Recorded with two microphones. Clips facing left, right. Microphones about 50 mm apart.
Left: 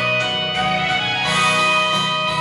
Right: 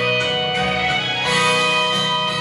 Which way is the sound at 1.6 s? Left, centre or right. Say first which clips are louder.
Left 1 dB; left.